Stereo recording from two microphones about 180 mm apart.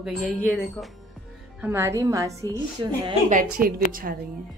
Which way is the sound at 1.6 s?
15° right (ahead or behind).